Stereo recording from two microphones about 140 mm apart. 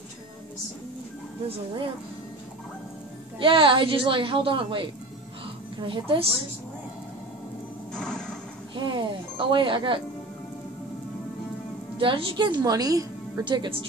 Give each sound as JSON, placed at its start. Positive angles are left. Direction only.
{"t": 3.3, "sound": "a woman's voice", "side_deg": -35}
{"t": 7.9, "sound": "a sound", "side_deg": 5}
{"t": 8.7, "sound": "a woman's voice", "side_deg": -35}
{"t": 12.0, "sound": "a woman's voice", "side_deg": -40}